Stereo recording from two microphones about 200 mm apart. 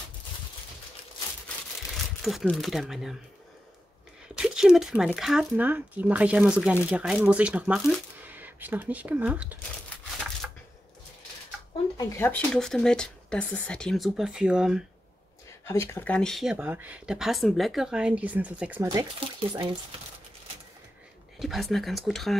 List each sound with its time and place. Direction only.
2.2 s speech: centre (ahead or behind)
4.4 s speech: 5° right (ahead or behind)
12.1 s speech: 10° left (ahead or behind)
15.6 s speech: 15° left (ahead or behind); by 18.9 s 5° right (ahead or behind)
18.9 s speech: 20° right (ahead or behind)
21.4 s speech: centre (ahead or behind)